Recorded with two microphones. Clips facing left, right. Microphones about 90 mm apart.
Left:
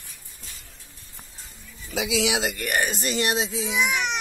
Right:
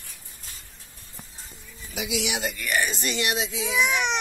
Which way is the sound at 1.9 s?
90° left.